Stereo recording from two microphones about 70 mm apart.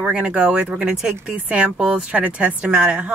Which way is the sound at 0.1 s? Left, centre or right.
Centre.